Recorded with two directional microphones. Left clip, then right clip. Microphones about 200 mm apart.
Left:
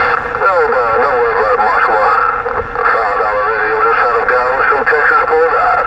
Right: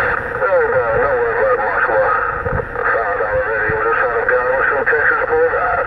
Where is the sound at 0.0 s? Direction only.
40° left (ahead or behind).